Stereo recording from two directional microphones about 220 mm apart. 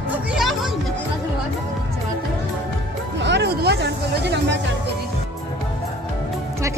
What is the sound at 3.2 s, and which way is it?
Music, 50° right (ahead or behind).